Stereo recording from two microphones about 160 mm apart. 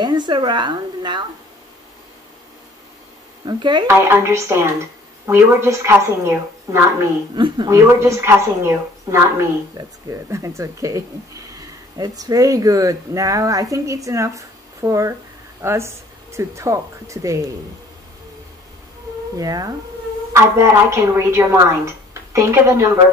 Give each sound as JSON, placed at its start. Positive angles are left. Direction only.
{"t": 0.0, "sound": "speech", "side_deg": -25}
{"t": 3.4, "sound": "speech", "side_deg": -30}
{"t": 3.9, "sound": "a woman's voice", "side_deg": -15}
{"t": 7.3, "sound": "a woman's voice", "side_deg": -30}
{"t": 19.3, "sound": "a woman's voice", "side_deg": -20}